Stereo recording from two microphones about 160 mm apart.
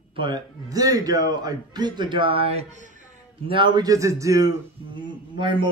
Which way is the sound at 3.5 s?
30° right (ahead or behind).